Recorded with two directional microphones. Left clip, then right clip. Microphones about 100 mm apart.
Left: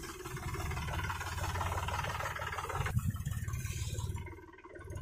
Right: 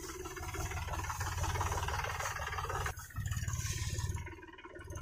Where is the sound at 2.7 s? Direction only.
Centre (ahead or behind).